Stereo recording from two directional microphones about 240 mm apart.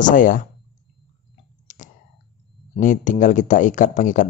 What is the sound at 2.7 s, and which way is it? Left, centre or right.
Speech, left.